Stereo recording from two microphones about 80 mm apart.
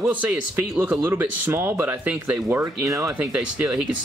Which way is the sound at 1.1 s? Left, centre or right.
Right.